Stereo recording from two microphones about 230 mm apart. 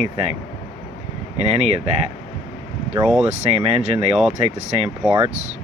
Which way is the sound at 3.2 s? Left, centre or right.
Right.